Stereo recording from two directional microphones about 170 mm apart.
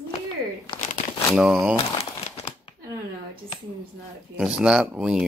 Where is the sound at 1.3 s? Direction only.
5° right (ahead or behind).